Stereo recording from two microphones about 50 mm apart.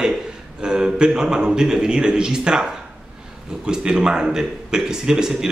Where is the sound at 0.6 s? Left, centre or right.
Centre.